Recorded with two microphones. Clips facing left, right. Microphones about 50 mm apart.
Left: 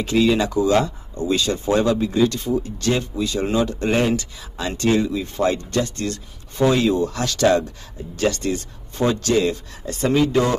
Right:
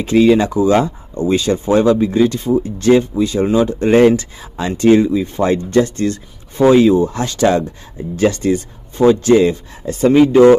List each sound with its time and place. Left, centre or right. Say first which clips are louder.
0.0 s speech: right 7 dB; right